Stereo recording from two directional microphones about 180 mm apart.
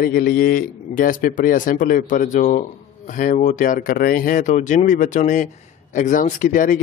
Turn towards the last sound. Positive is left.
turn(degrees=45)  # may be behind; listen again after turning